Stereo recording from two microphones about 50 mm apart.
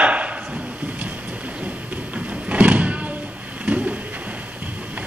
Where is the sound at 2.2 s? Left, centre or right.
Right.